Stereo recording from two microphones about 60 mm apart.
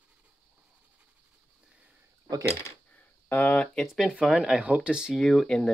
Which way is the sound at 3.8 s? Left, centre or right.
Centre.